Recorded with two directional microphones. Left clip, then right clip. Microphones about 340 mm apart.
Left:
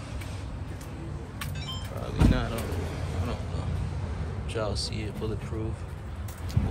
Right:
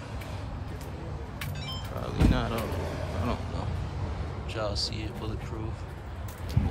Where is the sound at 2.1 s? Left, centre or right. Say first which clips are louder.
Left 1 dB; centre.